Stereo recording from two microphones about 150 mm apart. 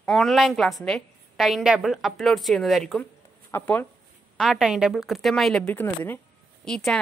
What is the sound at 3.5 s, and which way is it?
Speech, 10° left (ahead or behind).